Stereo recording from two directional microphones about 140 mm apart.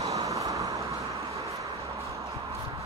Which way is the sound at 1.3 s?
20° right (ahead or behind).